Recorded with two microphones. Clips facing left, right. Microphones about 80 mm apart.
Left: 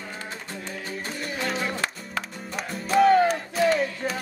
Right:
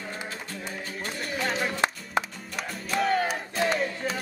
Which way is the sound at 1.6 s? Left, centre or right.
Right.